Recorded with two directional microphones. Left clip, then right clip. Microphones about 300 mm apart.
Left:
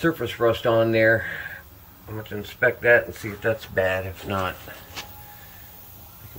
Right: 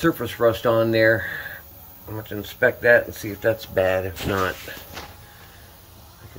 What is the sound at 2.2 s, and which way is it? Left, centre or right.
Speech, centre.